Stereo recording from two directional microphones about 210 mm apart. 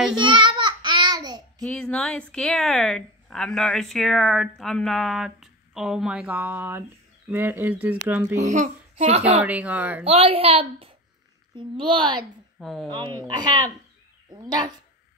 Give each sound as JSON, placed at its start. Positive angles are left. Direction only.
{"t": 0.1, "sound": "babbling", "side_deg": -25}
{"t": 1.6, "sound": "a woman's voice", "side_deg": 5}
{"t": 8.4, "sound": "a child's voice", "side_deg": -35}
{"t": 9.4, "sound": "speech", "side_deg": -5}
{"t": 10.0, "sound": "a woman's voice", "side_deg": -30}
{"t": 12.5, "sound": "speech", "side_deg": 0}
{"t": 12.9, "sound": "a woman's voice", "side_deg": -20}